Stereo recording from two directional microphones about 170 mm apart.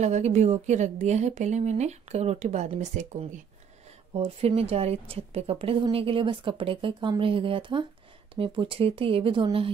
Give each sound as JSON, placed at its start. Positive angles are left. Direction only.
{"t": 0.0, "sound": "a woman's voice", "side_deg": -40}
{"t": 4.1, "sound": "a woman's voice", "side_deg": -35}